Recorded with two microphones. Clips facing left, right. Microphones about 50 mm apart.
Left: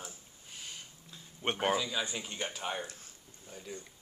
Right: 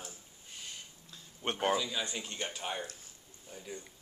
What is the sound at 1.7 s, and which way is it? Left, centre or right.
Speech, centre.